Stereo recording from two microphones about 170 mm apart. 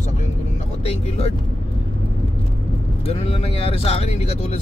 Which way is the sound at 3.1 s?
35° left (ahead or behind).